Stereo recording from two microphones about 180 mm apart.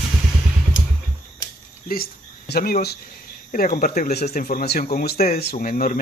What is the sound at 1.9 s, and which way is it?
Cricket, 60° left (ahead or behind).